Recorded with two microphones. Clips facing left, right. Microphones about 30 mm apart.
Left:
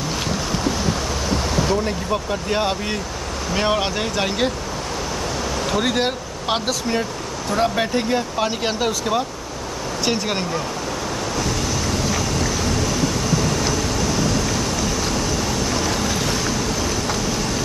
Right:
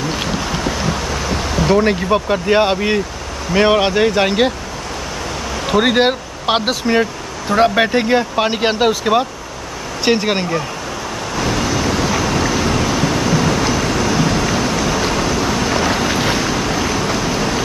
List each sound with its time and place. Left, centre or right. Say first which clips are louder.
0.1 s a sound: right 3 dB; right
2.0 s speech: right 7 dB; right
5.7 s speech: right 8 dB; right
11.3 s vehicle: right 8 dB; right